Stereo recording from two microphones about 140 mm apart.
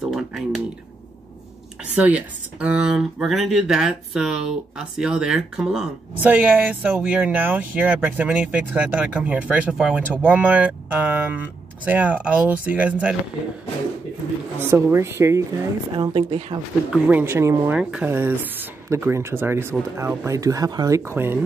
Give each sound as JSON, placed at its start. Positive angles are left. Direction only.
{"t": 0.1, "sound": "speech", "side_deg": 0}
{"t": 2.0, "sound": "speech", "side_deg": -10}
{"t": 14.6, "sound": "speech", "side_deg": -15}
{"t": 15.9, "sound": "a woman's voice", "side_deg": -35}
{"t": 16.9, "sound": "speech", "side_deg": -10}